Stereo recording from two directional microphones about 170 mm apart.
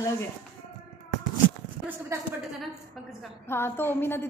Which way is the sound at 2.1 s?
15° right (ahead or behind).